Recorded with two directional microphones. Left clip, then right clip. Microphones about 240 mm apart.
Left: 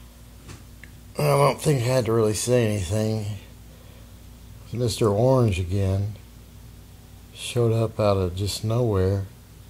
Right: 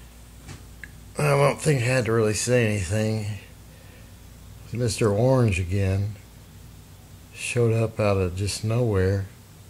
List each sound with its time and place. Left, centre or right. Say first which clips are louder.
0.7 s speech: left 1 dB; centre
4.7 s speech: left 1 dB; centre
7.5 s speech: even; centre